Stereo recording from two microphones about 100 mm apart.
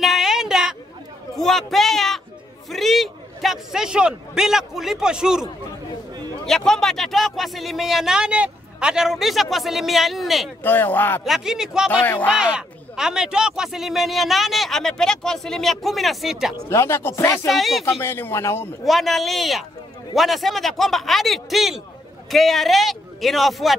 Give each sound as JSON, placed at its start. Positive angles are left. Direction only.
{"t": 0.0, "sound": "a sound", "side_deg": 0}
{"t": 1.4, "sound": "speech", "side_deg": 5}
{"t": 6.4, "sound": "speech", "side_deg": 5}
{"t": 10.6, "sound": "speech", "side_deg": 20}
{"t": 11.2, "sound": "speech", "side_deg": -5}
{"t": 11.9, "sound": "speech", "side_deg": 20}
{"t": 12.3, "sound": "speech", "side_deg": -10}
{"t": 16.6, "sound": "speech", "side_deg": 25}
{"t": 17.5, "sound": "speech", "side_deg": 0}
{"t": 18.0, "sound": "speech", "side_deg": 25}
{"t": 18.9, "sound": "speech", "side_deg": 0}